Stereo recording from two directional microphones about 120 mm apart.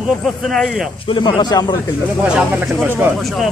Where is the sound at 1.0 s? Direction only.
45° left (ahead or behind).